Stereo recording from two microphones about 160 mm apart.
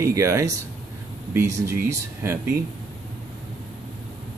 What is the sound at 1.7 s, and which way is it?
Speech, 15° right (ahead or behind).